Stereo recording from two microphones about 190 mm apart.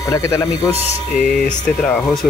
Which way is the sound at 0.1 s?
15° left (ahead or behind).